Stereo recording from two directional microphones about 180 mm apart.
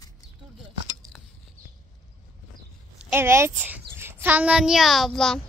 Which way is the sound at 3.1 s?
15° right (ahead or behind).